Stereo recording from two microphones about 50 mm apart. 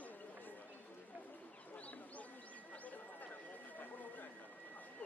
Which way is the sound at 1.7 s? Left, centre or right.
Left.